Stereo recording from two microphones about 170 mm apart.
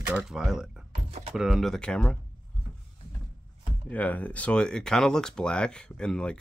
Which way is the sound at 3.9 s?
10° left (ahead or behind).